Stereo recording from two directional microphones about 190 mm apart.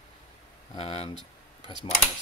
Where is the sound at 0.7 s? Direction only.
30° left (ahead or behind).